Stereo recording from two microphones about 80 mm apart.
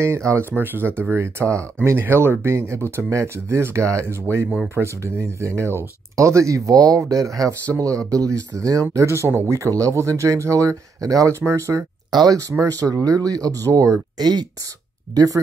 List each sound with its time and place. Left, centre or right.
0.0 s speech: right
12.1 s speech: right
12.4 s speech: right
14.1 s speech: right